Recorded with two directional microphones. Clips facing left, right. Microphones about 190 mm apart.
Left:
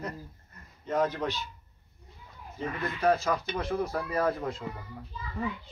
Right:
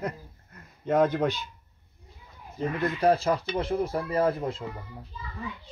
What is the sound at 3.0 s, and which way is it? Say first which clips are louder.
Speech: right 2 dB; 30° right (ahead or behind).